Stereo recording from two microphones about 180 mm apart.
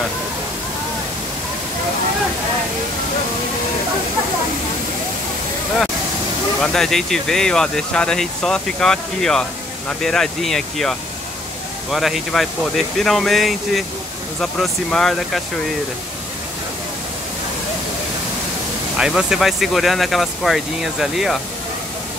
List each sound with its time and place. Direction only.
6.6 s speech: centre (ahead or behind)
18.9 s speech: 5° right (ahead or behind)